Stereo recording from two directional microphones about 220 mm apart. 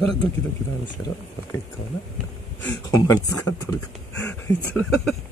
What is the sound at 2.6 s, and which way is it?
Speech, 15° left (ahead or behind).